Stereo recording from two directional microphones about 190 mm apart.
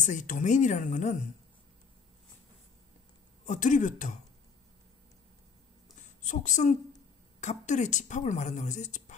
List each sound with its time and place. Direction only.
0.0 s a woman's voice: 40° left (ahead or behind)
3.4 s a woman's voice: 40° left (ahead or behind)
5.9 s a sound: 40° left (ahead or behind)
7.3 s a woman's voice: 40° left (ahead or behind)